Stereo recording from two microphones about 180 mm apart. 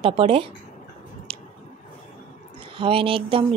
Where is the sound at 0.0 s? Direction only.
30° right (ahead or behind).